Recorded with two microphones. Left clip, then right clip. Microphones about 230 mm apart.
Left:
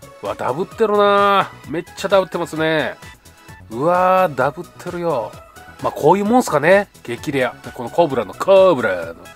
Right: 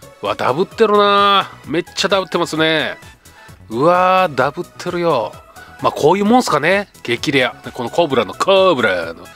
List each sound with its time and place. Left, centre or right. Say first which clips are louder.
0.2 s speech: right 5 dB; centre